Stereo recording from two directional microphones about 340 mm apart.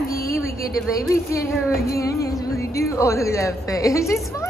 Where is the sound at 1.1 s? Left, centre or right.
Centre.